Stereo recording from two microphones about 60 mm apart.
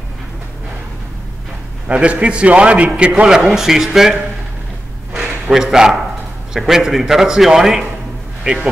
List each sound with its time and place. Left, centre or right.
1.9 s a man's voice: centre
5.1 s a sound: centre
6.5 s a man's voice: centre